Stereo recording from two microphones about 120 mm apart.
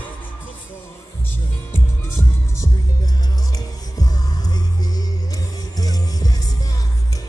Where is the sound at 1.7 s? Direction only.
25° left (ahead or behind).